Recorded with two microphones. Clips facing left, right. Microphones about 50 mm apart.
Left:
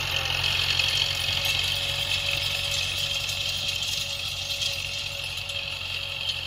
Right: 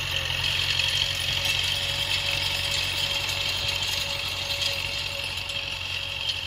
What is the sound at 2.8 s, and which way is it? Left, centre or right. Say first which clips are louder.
Engine: right 1 dB; right.